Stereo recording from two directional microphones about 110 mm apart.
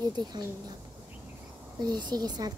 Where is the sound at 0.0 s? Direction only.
40° right (ahead or behind).